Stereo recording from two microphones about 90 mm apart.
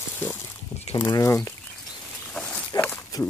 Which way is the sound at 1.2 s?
35° left (ahead or behind).